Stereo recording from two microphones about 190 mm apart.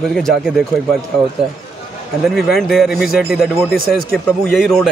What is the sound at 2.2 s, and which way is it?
Speech, centre (ahead or behind).